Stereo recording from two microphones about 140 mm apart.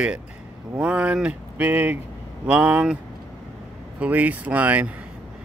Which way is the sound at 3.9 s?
10° right (ahead or behind).